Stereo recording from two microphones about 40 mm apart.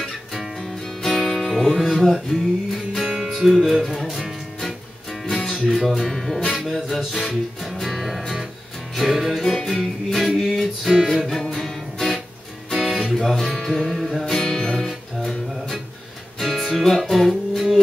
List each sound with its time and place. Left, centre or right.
0.0 s music: centre
2.0 s music: centre
2.2 s music: centre
3.3 s speech: centre
5.2 s music: centre
6.0 s music: centre
9.4 s music: centre
11.5 s music: centre
13.1 s speech: centre
13.7 s music: centre